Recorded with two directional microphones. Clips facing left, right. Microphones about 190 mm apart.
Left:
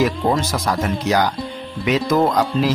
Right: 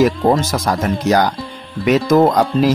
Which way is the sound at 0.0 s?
45° right (ahead or behind).